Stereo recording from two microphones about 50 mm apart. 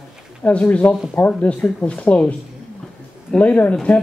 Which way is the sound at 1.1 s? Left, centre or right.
Left.